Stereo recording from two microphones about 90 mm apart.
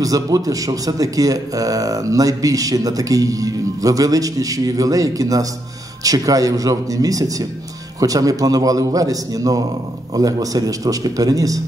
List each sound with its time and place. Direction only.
0.0 s a man's voice: 40° right (ahead or behind)